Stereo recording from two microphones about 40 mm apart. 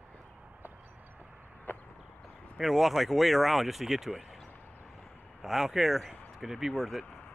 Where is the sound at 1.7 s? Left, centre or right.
Left.